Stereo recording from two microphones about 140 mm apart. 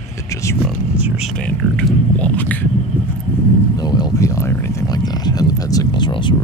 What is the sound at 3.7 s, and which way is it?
Speech, 30° left (ahead or behind).